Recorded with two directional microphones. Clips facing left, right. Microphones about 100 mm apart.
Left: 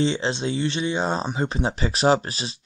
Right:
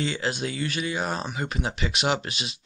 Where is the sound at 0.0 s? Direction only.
30° left (ahead or behind).